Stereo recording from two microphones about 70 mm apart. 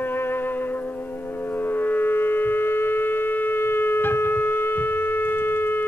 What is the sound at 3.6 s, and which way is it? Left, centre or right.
Shofar, left.